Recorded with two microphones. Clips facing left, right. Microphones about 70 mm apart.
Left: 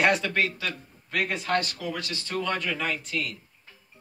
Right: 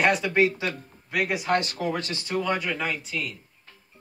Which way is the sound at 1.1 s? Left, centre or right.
Centre.